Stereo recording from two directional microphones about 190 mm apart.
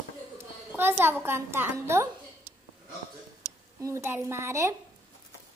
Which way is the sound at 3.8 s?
15° right (ahead or behind).